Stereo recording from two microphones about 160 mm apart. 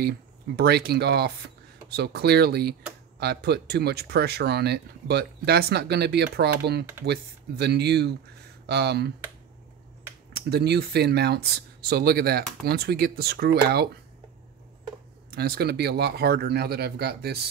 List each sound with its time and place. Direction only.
0.6 s speech: 85° right
10.3 s speech: 90° right
15.3 s speech: 75° right (ahead or behind)